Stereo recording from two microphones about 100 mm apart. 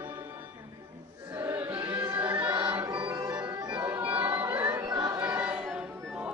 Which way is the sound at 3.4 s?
45° right (ahead or behind).